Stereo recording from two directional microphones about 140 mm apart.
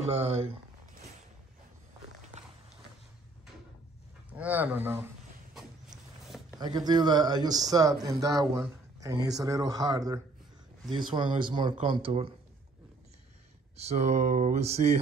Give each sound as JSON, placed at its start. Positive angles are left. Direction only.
{"t": 0.1, "sound": "speech", "side_deg": -45}
{"t": 4.3, "sound": "speech", "side_deg": -10}
{"t": 6.6, "sound": "speech", "side_deg": -30}
{"t": 13.7, "sound": "speech", "side_deg": -50}